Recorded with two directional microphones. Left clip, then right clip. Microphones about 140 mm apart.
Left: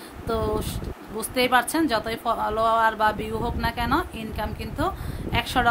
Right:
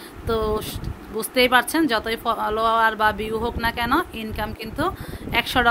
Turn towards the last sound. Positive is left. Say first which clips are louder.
# right 3 dB
turn(degrees=-15)  # may be behind; listen again after turning